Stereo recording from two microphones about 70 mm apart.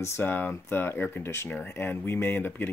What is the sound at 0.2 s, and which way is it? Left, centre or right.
Speech, left.